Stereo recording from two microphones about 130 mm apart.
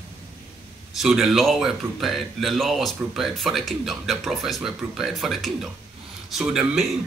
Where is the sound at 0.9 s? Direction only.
Centre (ahead or behind).